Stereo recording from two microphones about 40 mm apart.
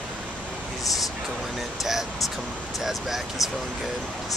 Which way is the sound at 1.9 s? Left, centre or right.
Centre.